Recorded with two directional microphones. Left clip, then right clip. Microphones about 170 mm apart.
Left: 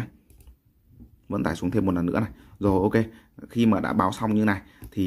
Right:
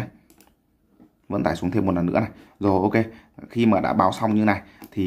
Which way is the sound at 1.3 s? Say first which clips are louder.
Right 3 dB; 25° left (ahead or behind).